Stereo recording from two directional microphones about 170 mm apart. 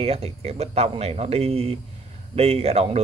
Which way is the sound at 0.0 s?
35° right (ahead or behind).